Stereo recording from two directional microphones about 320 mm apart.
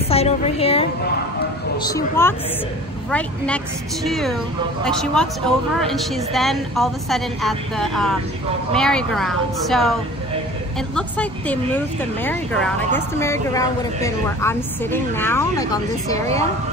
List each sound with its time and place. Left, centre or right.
0.1 s a woman's voice: centre
11.0 s speech: centre